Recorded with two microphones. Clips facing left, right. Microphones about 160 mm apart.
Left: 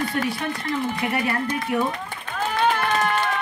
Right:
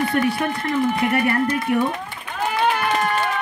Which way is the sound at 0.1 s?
55° right (ahead or behind).